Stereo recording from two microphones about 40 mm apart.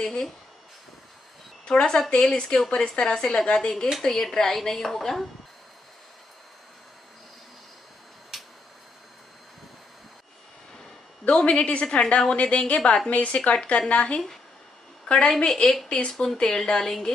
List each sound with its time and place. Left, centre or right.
0.0 s a woman's voice: centre
1.7 s a woman's voice: centre
8.3 s a sound: centre
11.2 s a woman's voice: left; by 17.1 s centre